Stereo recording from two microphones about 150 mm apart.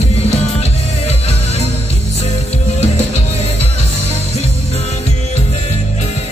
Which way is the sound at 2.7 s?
45° left (ahead or behind).